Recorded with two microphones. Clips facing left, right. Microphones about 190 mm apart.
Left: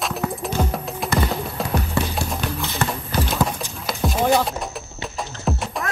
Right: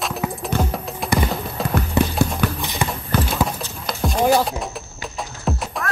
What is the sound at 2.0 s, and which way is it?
Clip-clop, 20° right (ahead or behind).